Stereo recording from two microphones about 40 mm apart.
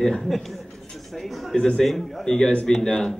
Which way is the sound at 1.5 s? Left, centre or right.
Left.